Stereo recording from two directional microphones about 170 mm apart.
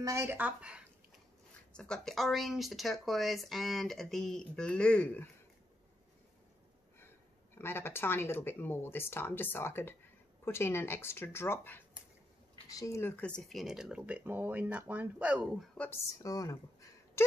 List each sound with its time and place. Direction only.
0.0 s speech: 15° right (ahead or behind)
1.7 s speech: 5° left (ahead or behind)
7.5 s speech: 15° left (ahead or behind); by 15.7 s 5° right (ahead or behind)
15.8 s a woman's voice: 15° left (ahead or behind)